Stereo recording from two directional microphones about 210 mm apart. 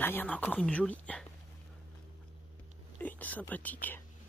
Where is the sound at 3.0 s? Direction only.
10° left (ahead or behind).